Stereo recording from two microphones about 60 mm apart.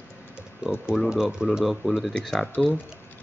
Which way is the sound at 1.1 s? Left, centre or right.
Centre.